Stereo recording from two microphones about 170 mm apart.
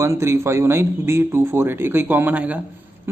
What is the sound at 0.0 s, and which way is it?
Speech, 15° right (ahead or behind).